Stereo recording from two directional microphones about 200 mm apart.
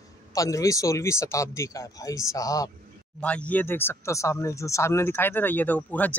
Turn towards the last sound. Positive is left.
turn(degrees=10)  # may be behind; listen again after turning